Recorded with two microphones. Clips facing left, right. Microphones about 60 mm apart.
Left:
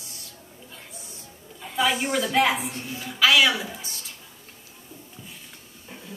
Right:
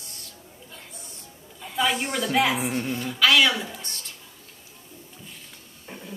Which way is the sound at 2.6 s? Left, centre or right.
Right.